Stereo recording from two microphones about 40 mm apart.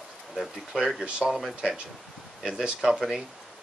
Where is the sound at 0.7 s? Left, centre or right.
Centre.